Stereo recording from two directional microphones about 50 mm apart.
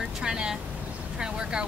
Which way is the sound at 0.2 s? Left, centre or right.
Centre.